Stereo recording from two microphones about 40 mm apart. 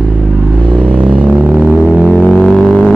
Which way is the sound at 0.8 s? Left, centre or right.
Right.